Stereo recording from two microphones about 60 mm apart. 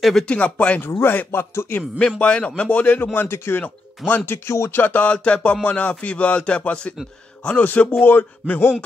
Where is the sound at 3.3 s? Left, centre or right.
Left.